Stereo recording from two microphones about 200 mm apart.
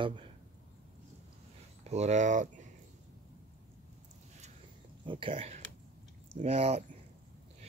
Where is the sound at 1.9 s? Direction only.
35° right (ahead or behind).